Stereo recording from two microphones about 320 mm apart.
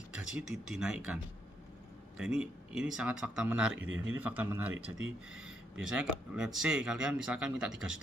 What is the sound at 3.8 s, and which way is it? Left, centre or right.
Speech, right.